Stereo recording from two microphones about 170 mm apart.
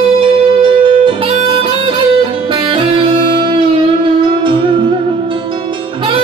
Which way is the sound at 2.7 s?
30° right (ahead or behind).